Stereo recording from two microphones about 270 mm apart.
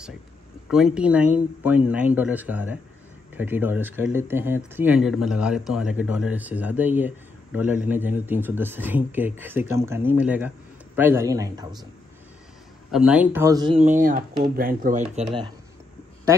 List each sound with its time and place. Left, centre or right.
0.7 s speech: centre
12.9 s speech: centre; by 15.2 s right